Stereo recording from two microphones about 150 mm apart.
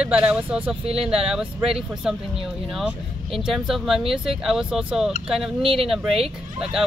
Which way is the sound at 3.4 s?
Centre (ahead or behind).